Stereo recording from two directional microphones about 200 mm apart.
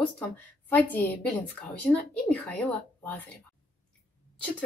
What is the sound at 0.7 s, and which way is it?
Speech, 10° left (ahead or behind).